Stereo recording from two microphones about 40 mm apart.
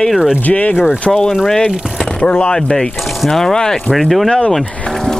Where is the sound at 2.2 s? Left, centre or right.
Left.